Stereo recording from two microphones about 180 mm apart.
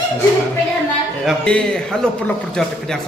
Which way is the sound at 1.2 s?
5° left (ahead or behind).